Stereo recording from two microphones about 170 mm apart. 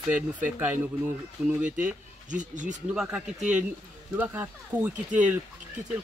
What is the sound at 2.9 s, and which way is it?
Speech, 5° right (ahead or behind).